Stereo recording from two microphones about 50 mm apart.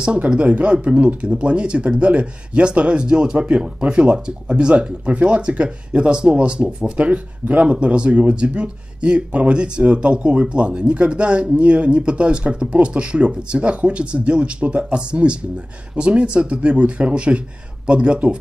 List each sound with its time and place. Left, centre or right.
0.0 s speech: centre